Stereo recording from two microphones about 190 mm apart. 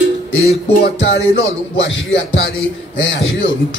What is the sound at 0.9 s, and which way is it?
A man's voice, 75° left (ahead or behind).